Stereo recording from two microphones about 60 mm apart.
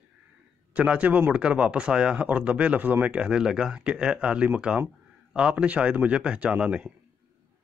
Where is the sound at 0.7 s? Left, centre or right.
Right.